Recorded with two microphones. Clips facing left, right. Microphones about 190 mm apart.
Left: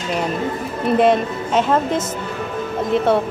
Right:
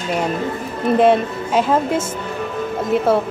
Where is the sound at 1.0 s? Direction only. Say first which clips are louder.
Right 1 dB; 5° right (ahead or behind).